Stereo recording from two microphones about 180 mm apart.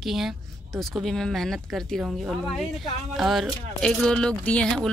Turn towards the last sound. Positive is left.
turn(degrees=5)  # may be behind; listen again after turning